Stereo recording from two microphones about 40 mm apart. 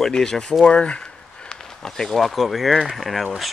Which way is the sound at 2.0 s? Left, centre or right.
Centre.